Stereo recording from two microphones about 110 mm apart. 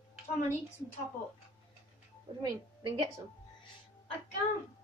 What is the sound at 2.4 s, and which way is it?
Speech, 40° right (ahead or behind).